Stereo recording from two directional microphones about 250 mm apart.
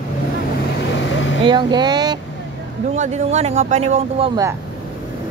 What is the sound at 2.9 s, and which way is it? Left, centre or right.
Speech, right.